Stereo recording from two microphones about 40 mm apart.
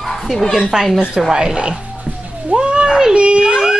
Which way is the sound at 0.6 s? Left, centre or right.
Centre.